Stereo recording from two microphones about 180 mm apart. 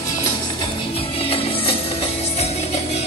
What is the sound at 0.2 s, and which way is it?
Music, 30° left (ahead or behind).